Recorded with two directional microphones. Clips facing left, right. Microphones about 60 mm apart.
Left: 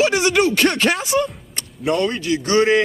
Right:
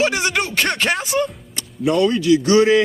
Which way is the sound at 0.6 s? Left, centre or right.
Centre.